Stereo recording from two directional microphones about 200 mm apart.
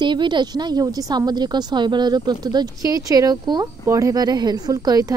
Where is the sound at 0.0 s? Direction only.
25° right (ahead or behind).